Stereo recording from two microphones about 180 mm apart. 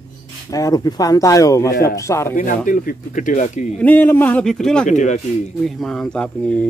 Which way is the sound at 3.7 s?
10° left (ahead or behind).